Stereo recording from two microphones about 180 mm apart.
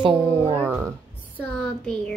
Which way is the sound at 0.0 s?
25° right (ahead or behind).